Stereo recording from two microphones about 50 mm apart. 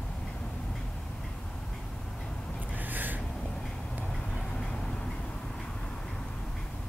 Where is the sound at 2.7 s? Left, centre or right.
Right.